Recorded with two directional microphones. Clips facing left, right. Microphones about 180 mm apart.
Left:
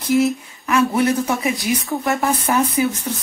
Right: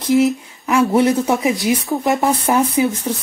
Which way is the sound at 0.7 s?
30° right (ahead or behind).